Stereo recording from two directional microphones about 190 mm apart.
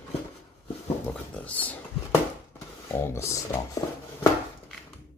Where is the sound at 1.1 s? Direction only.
10° left (ahead or behind).